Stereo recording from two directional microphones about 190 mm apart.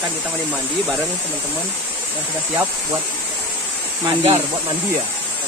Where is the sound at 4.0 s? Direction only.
25° right (ahead or behind).